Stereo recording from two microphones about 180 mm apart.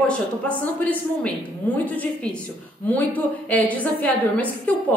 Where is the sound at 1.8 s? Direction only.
10° left (ahead or behind).